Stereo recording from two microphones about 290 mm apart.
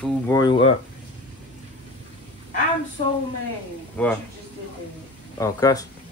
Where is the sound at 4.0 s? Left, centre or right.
Centre.